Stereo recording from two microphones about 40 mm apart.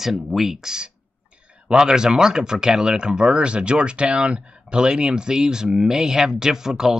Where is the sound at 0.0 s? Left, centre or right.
Centre.